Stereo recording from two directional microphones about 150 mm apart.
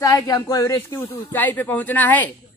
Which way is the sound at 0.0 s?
25° left (ahead or behind).